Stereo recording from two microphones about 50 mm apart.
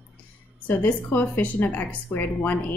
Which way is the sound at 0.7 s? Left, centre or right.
Left.